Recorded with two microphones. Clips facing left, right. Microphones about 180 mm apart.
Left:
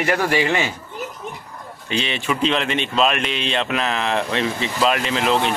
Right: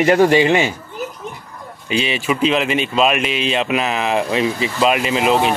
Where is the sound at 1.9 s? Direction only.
5° right (ahead or behind).